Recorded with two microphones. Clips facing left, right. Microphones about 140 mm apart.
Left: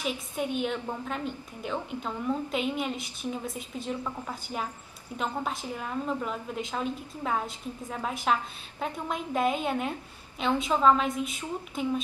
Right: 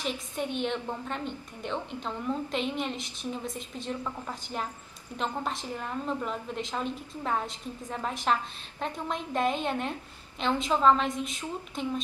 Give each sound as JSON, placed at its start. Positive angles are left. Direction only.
{"t": 0.0, "sound": "a woman's voice", "side_deg": 5}